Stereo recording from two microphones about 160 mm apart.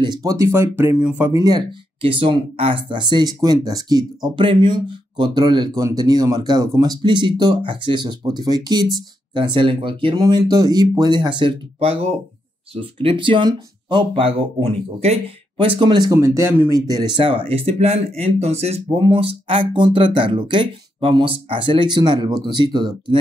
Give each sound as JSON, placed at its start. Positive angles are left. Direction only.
{"t": 0.0, "sound": "speech", "side_deg": -25}
{"t": 13.0, "sound": "speech", "side_deg": -30}